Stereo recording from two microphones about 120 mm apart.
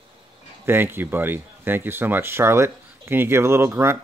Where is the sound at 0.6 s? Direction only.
20° right (ahead or behind).